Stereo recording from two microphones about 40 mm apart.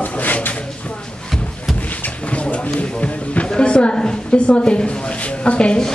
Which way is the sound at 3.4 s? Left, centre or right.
Left.